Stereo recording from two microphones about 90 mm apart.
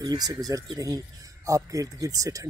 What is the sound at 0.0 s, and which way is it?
Speech, 50° right (ahead or behind).